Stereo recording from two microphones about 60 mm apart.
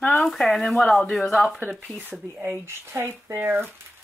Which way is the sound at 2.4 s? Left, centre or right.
Right.